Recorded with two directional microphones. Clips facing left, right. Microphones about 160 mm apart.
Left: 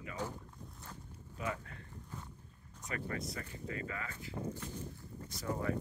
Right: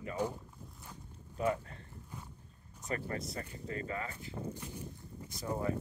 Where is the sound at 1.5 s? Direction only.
30° right (ahead or behind).